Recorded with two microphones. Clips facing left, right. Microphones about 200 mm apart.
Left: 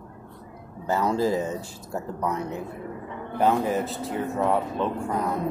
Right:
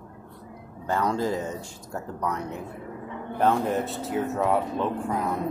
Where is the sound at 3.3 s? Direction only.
Centre (ahead or behind).